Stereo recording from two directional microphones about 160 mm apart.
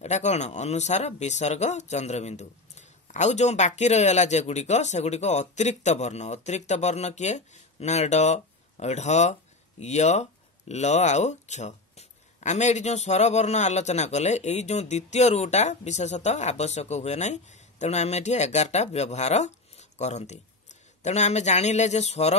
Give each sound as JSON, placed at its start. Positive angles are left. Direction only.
{"t": 0.0, "sound": "speech", "side_deg": 45}